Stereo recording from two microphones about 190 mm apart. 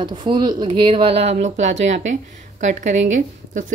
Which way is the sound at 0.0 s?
25° right (ahead or behind).